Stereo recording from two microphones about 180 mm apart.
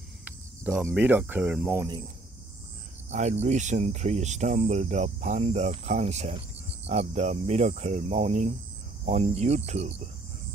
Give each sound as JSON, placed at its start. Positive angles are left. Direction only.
{"t": 0.2, "sound": "cricket", "side_deg": -10}
{"t": 0.8, "sound": "speech", "side_deg": -10}
{"t": 3.1, "sound": "speech", "side_deg": -40}